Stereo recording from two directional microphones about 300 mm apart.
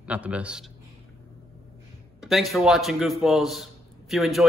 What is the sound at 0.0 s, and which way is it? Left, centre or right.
Speech, centre.